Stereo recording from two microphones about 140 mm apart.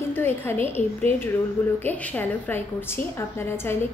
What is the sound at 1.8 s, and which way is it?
A woman's voice, 10° left (ahead or behind).